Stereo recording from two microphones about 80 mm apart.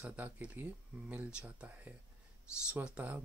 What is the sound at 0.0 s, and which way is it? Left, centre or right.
Speech, centre.